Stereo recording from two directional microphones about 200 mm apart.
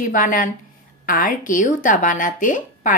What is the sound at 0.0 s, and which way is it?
A woman's voice, 45° left (ahead or behind).